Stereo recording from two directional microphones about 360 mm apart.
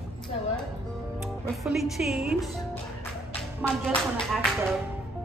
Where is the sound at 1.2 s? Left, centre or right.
Centre.